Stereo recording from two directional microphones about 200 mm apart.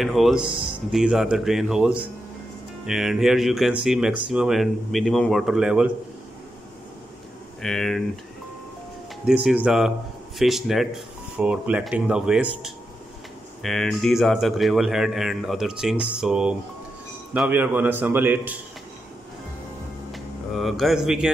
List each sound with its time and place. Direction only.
0.0 s speech: centre (ahead or behind)
7.6 s speech: centre (ahead or behind)
9.2 s a man's voice: 5° right (ahead or behind)
20.1 s a sound: centre (ahead or behind)